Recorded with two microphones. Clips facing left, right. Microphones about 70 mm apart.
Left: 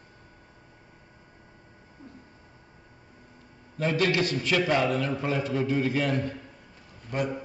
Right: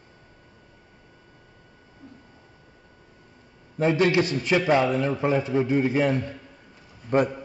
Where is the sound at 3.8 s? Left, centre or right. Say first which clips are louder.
Right 5 dB; right.